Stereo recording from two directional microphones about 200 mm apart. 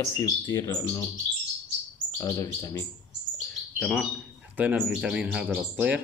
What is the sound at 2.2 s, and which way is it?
Speech, 15° left (ahead or behind).